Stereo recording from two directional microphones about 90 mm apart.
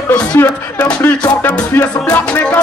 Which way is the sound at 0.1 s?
20° left (ahead or behind).